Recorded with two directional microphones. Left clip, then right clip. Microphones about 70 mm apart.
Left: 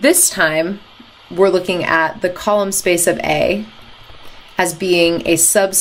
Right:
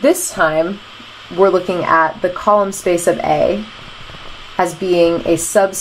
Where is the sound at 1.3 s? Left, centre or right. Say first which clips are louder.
Right 1 dB; right.